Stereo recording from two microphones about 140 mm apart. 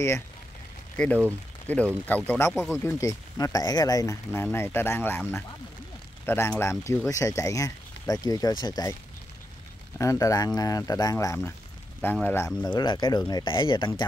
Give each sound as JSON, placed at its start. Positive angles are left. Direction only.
{"t": 0.9, "sound": "speech", "side_deg": 10}
{"t": 2.5, "sound": "speech", "side_deg": -5}
{"t": 2.8, "sound": "speech", "side_deg": 20}
{"t": 6.2, "sound": "speech", "side_deg": 15}
{"t": 9.9, "sound": "speech", "side_deg": 25}
{"t": 12.6, "sound": "speech", "side_deg": 30}